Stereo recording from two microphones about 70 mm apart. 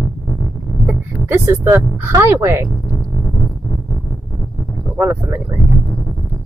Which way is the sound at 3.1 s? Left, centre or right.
Centre.